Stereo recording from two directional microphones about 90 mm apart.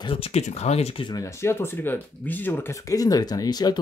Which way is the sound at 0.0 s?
90° left.